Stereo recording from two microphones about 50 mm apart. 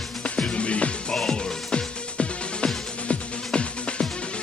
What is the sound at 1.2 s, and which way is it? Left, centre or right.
Music, centre.